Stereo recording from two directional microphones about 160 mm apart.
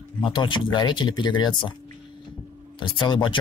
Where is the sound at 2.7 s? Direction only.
30° left (ahead or behind).